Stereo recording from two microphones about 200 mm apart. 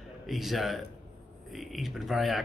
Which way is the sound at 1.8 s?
Centre (ahead or behind).